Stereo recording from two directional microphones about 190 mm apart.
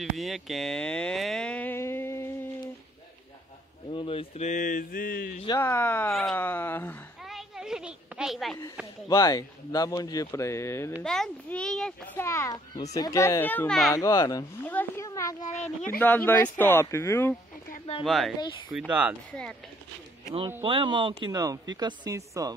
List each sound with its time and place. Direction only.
0.0 s speech: centre (ahead or behind)
3.9 s speech: 25° left (ahead or behind); by 5.3 s 50° left (ahead or behind)
5.6 s a child's voice: 10° left (ahead or behind)
7.2 s a sound: centre (ahead or behind)
9.1 s a child's voice: 20° left (ahead or behind)
11.0 s a child's voice: 5° left (ahead or behind)
13.9 s a child's voice: 20° left (ahead or behind)
18.0 s speech: centre (ahead or behind)
20.6 s speech: 25° right (ahead or behind)